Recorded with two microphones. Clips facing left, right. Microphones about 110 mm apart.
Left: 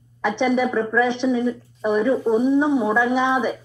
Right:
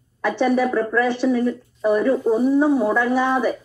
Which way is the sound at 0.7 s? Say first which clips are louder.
Even; 15° left (ahead or behind).